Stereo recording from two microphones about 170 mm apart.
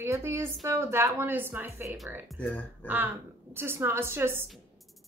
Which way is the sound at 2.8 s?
10° right (ahead or behind).